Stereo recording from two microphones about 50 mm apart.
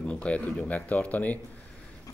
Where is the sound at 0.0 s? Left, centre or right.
Left.